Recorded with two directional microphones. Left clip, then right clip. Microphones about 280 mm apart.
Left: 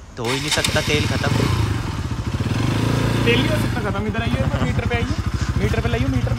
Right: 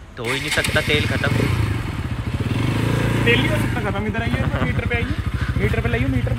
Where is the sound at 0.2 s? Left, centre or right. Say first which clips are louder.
Even; centre.